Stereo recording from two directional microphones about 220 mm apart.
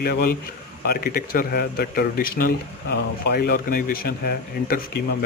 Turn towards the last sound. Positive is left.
turn(degrees=45)  # may be behind; listen again after turning